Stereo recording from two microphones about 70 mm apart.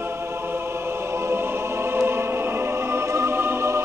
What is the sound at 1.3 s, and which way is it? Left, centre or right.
Music, right.